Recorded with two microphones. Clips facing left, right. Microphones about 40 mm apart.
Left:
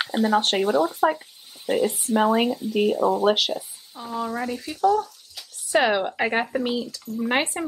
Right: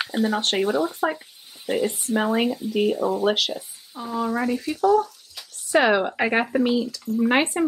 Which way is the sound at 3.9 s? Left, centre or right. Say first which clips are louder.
Right 3 dB; centre.